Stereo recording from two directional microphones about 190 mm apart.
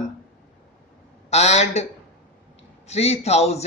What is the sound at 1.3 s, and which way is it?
Speech, 35° left (ahead or behind).